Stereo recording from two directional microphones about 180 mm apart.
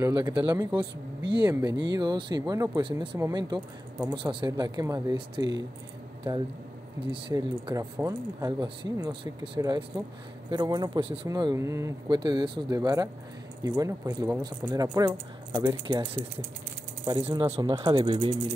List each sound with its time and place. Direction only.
0.0 s speech: 20° right (ahead or behind)
7.1 s speech: 25° right (ahead or behind)